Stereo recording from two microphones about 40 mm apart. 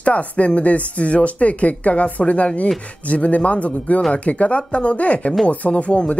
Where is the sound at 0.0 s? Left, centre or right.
Left.